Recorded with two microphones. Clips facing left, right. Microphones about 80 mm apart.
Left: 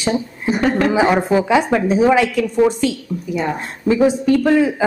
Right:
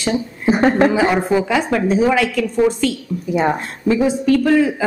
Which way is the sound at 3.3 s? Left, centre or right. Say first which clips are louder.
Right 4 dB; right.